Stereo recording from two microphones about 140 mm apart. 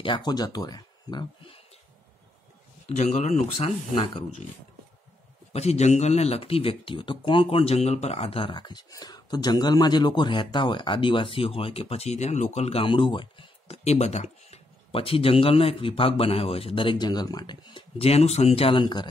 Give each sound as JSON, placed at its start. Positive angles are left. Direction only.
{"t": 0.0, "sound": "speech", "side_deg": 35}
{"t": 2.9, "sound": "speech", "side_deg": 55}
{"t": 5.5, "sound": "speech", "side_deg": 50}